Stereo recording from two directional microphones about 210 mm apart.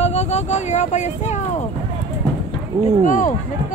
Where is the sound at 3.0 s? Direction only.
40° left (ahead or behind).